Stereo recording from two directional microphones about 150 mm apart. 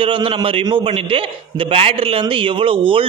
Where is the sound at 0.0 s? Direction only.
35° right (ahead or behind).